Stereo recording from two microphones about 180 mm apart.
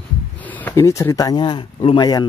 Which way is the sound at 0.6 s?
15° left (ahead or behind).